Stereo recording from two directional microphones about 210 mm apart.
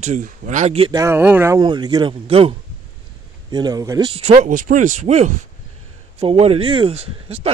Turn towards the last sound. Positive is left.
turn(degrees=-30)  # may be behind; listen again after turning